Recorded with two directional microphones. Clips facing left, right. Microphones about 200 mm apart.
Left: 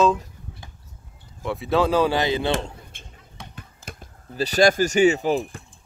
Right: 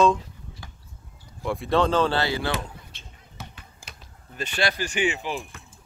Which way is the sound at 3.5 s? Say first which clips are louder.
Left 7 dB; 50° left (ahead or behind).